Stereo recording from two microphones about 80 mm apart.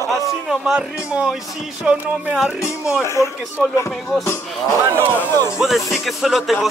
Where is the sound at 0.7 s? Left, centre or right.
Centre.